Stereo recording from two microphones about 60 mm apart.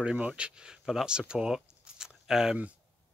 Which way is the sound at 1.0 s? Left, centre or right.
Centre.